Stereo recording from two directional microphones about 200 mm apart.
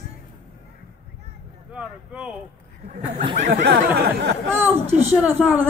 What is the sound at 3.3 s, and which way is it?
Speech, 50° right (ahead or behind).